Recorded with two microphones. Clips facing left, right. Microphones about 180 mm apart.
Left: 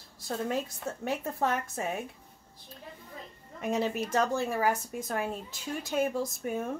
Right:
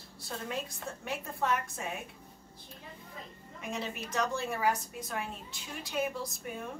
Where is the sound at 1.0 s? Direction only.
45° left (ahead or behind).